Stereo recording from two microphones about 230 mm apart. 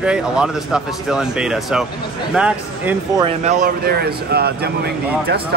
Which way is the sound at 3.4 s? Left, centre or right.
Right.